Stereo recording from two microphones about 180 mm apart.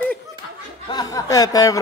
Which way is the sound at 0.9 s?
20° left (ahead or behind).